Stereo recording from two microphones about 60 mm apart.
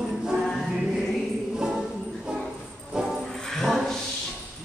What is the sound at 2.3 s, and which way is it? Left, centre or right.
Music, centre.